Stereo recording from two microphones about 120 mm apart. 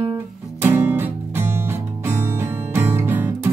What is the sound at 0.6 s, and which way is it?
Music, 15° right (ahead or behind).